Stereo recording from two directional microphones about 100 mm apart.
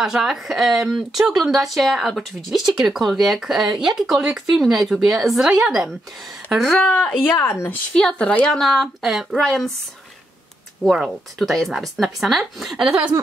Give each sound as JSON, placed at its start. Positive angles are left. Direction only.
{"t": 0.0, "sound": "speech", "side_deg": -5}
{"t": 6.8, "sound": "speech", "side_deg": 10}
{"t": 7.2, "sound": "speech", "side_deg": 25}
{"t": 7.6, "sound": "speech", "side_deg": 5}
{"t": 10.8, "sound": "speech", "side_deg": 0}